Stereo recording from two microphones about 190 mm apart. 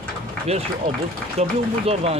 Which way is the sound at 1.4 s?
35° right (ahead or behind).